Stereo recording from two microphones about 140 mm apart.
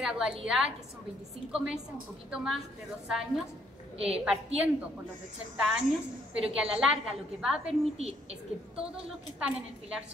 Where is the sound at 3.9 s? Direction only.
45° right (ahead or behind).